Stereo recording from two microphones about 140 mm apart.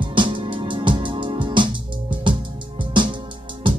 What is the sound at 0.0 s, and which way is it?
Music, 35° right (ahead or behind).